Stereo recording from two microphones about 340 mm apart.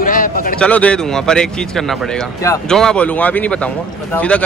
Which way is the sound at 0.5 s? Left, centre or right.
Centre.